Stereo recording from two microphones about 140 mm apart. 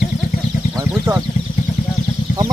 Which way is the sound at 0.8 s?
25° right (ahead or behind).